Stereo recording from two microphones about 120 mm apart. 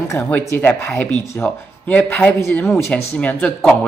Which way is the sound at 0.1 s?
20° left (ahead or behind).